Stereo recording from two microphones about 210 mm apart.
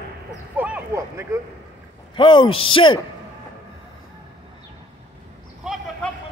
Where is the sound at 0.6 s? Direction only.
10° right (ahead or behind).